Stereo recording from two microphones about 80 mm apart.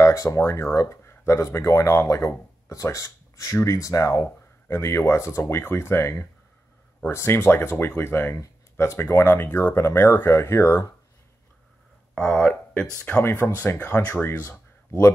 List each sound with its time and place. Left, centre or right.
0.0 s a sound: left
0.4 s speech: left
12.2 s speech: centre
13.2 s speech: left
14.9 s speech: left